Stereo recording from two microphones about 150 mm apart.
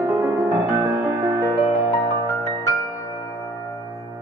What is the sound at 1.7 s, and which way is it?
Music, 35° left (ahead or behind).